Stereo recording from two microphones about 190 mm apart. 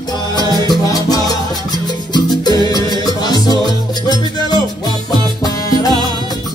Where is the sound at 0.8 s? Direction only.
20° left (ahead or behind).